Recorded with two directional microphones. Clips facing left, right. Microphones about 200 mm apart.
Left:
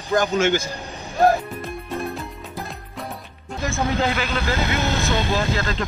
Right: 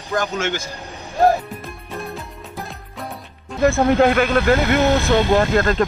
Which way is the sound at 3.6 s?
60° right (ahead or behind).